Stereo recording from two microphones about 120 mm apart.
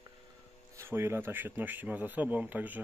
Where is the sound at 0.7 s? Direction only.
20° right (ahead or behind).